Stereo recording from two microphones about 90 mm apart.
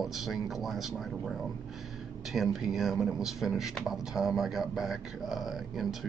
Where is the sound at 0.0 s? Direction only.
Centre (ahead or behind).